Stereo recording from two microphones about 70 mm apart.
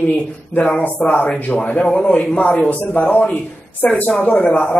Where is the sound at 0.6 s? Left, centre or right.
Left.